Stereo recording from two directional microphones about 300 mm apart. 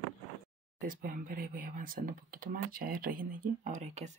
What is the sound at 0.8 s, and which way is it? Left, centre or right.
Speech, right.